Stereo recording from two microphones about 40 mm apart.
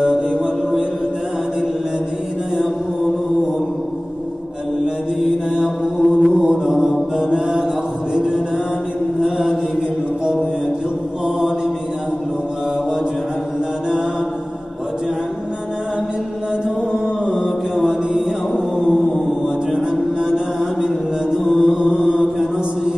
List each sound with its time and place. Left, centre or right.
0.3 s mantra: right
5.2 s mantra: centre
6.4 s mantra: centre
7.2 s music: centre
11.2 s mantra: centre
16.6 s mantra: centre
17.2 s mantra: centre
17.7 s mantra: centre
19.9 s music: centre
20.8 s mantra: centre